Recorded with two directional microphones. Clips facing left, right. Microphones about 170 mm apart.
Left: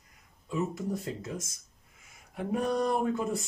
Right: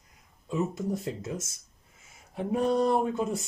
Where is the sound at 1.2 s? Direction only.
25° right (ahead or behind).